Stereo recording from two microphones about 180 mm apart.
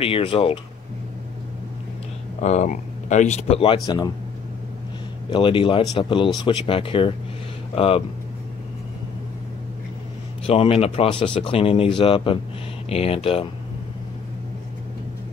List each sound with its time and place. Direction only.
0.0 s speech: 30° left (ahead or behind)
2.4 s speech: 40° left (ahead or behind); by 4.1 s 20° left (ahead or behind)
5.3 s speech: 30° left (ahead or behind)
10.4 s speech: 35° left (ahead or behind)